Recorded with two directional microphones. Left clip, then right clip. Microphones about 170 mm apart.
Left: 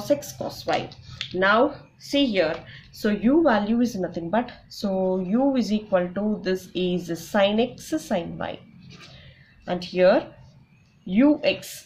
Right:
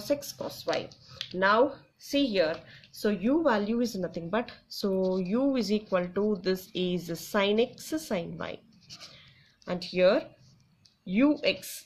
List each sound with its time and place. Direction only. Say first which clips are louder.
0.0 s a woman's voice: left 6 dB; 40° right (ahead or behind)
9.7 s a woman's voice: left 5 dB; 40° right (ahead or behind)